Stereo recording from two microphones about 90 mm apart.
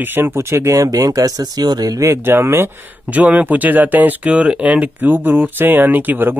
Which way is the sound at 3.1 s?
15° right (ahead or behind).